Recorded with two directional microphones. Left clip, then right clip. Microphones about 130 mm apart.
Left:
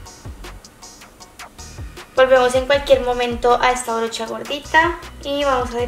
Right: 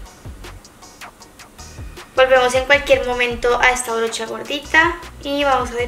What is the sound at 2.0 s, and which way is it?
A woman's voice, centre (ahead or behind).